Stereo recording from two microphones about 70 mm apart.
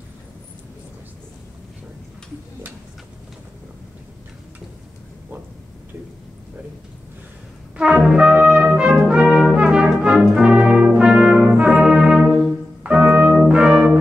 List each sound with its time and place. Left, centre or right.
7.7 s brass instrument: centre
12.8 s music: centre
13.5 s brass instrument: centre